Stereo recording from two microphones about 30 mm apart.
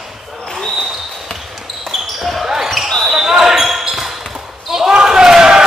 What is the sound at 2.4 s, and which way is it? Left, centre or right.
Basketball bounce, centre.